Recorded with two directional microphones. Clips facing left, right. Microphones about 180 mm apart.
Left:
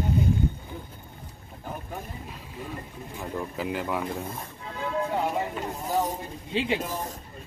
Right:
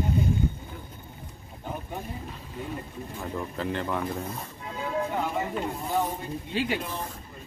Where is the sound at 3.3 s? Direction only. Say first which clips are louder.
Even; 5° left (ahead or behind).